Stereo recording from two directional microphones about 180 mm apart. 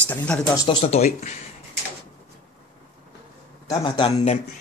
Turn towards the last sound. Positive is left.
turn(degrees=30)  # may be behind; listen again after turning